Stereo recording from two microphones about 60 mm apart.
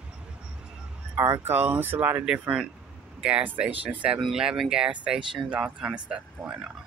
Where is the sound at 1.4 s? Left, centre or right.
Right.